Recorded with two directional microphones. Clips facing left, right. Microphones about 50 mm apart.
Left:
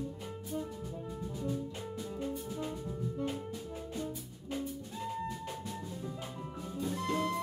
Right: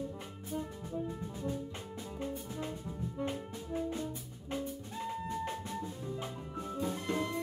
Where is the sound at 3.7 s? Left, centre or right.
Right.